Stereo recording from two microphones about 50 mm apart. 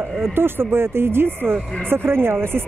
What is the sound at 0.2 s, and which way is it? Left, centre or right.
Speech, right.